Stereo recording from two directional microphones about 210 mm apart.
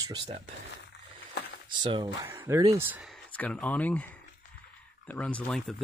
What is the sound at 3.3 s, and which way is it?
Speech, 5° left (ahead or behind).